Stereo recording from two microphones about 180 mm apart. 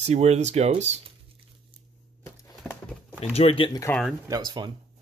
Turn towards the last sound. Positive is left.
turn(degrees=-25)  # may be behind; listen again after turning